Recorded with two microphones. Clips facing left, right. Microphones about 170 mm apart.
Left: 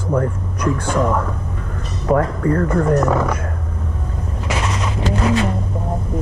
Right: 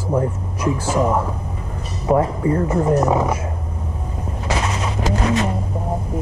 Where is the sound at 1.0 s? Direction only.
25° right (ahead or behind).